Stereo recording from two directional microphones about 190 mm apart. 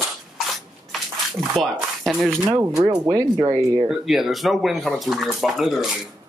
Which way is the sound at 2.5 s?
20° right (ahead or behind).